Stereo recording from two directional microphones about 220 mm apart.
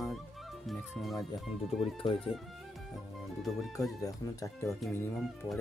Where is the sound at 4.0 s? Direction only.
15° left (ahead or behind).